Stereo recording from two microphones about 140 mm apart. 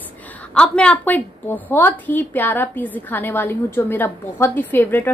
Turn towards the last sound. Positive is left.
turn(degrees=15)  # may be behind; listen again after turning